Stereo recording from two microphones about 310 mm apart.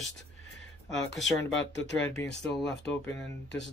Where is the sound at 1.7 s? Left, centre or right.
Left.